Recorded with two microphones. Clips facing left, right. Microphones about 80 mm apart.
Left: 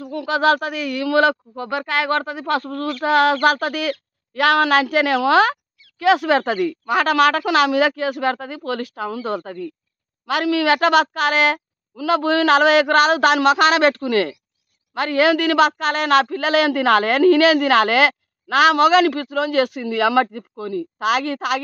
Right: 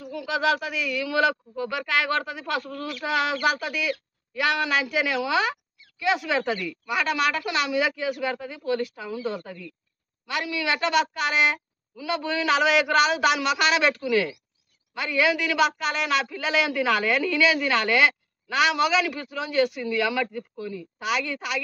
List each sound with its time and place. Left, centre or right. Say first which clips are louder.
0.0 s speech: left 7 dB; left
1.5 s speech: left 3 dB; left
10.2 s speech: left 10 dB; left